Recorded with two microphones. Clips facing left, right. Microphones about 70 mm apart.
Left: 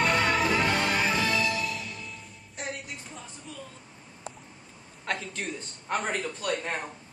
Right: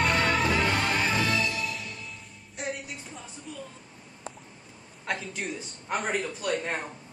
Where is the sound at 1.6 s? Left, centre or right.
Centre.